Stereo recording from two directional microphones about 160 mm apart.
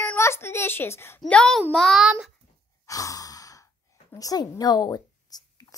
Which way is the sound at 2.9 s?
20° left (ahead or behind).